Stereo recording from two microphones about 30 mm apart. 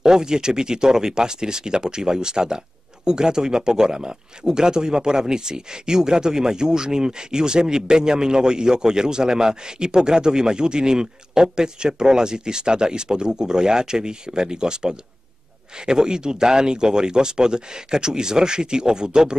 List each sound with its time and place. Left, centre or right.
0.0 s speech: right